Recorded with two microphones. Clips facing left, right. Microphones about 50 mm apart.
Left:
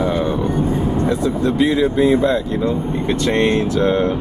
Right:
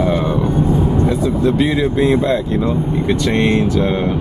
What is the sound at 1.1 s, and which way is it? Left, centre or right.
Speech, centre.